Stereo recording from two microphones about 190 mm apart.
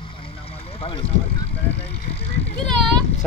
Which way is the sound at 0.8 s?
30° left (ahead or behind).